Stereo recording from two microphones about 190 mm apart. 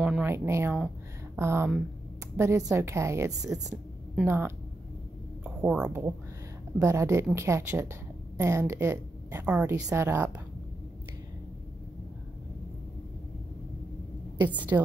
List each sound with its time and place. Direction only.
0.0 s a woman's voice: 10° right (ahead or behind)
14.4 s a woman's voice: 10° right (ahead or behind)